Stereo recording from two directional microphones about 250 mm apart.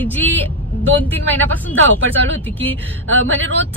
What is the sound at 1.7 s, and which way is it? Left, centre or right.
Speech, right.